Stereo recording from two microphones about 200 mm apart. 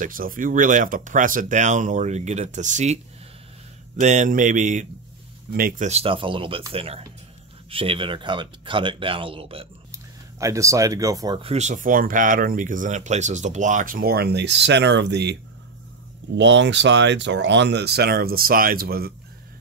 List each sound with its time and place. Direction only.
0.0 s speech: 45° right (ahead or behind)
5.9 s speech: 30° right (ahead or behind)
10.4 s speech: 15° right (ahead or behind)
11.4 s speech: 35° right (ahead or behind); by 15.3 s 60° right (ahead or behind)
16.3 s speech: 65° right (ahead or behind)